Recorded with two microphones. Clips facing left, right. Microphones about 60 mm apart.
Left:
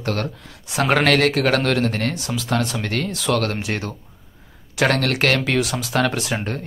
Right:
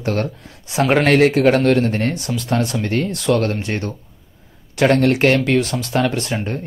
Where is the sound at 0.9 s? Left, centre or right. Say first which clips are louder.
Right 3 dB; centre.